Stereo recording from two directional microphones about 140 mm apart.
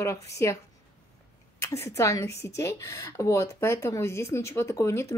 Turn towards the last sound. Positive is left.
turn(degrees=20)  # may be behind; listen again after turning